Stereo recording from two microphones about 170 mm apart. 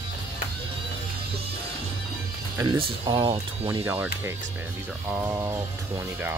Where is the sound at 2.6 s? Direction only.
30° right (ahead or behind).